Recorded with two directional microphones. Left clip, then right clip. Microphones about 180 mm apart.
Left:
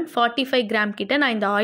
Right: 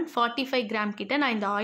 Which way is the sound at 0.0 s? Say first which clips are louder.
Left 5 dB; 15° left (ahead or behind).